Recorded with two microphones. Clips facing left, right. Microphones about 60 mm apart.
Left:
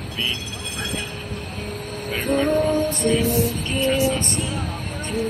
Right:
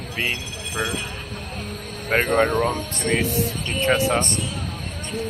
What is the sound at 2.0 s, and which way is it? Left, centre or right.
Speech, right.